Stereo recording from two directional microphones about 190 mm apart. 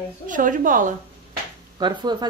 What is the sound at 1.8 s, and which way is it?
Speech, 25° right (ahead or behind).